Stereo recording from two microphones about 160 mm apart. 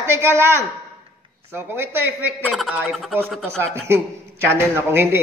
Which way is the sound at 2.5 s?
Centre (ahead or behind).